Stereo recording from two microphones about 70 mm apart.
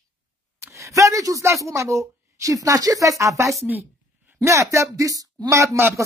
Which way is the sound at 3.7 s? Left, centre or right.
Right.